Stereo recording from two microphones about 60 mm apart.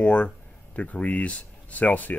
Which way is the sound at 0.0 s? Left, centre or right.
Centre.